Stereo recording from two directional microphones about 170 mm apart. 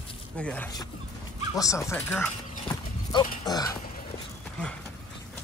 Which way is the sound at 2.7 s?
25° left (ahead or behind).